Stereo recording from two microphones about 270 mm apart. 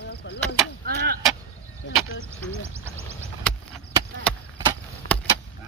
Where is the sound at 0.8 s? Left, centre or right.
Right.